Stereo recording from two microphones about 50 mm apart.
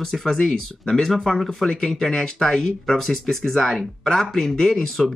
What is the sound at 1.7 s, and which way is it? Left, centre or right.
Speech, centre.